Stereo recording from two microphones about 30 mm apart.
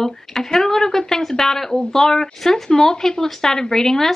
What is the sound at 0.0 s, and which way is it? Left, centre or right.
Speech, centre.